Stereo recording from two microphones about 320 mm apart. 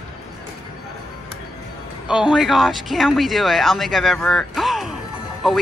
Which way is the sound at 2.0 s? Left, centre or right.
Centre.